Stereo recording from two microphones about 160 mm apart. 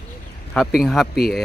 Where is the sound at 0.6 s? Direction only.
Centre (ahead or behind).